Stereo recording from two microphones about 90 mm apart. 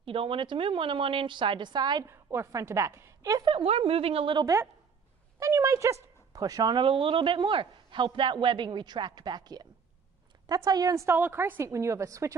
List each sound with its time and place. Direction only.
0.0 s a woman's voice: 90° right; by 2.0 s 50° right (ahead or behind)
2.0 s a woman's voice: 30° right (ahead or behind)
3.2 s speech: 40° right (ahead or behind)
3.4 s a woman's voice: 80° right
5.4 s speech: 35° right (ahead or behind)
6.8 s a man's voice: 75° right (ahead or behind); by 11.1 s 40° right (ahead or behind)
11.1 s a woman's voice: 25° right (ahead or behind)